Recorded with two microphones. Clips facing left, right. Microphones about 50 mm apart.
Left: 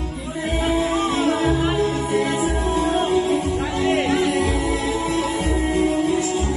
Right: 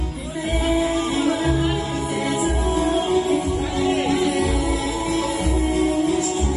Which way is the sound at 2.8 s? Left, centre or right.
Left.